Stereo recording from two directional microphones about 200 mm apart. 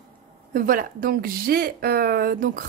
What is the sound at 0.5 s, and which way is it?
Speech, 45° right (ahead or behind).